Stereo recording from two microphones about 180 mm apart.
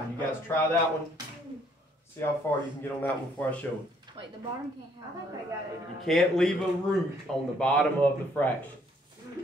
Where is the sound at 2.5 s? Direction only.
10° left (ahead or behind).